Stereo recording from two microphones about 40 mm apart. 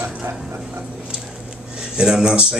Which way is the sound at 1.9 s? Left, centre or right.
Centre.